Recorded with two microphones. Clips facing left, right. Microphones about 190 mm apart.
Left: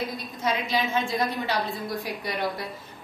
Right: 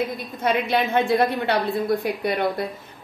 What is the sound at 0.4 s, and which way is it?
A woman's voice, 60° right (ahead or behind).